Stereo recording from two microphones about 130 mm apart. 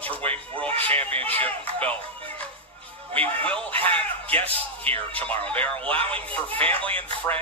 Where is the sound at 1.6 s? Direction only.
45° right (ahead or behind).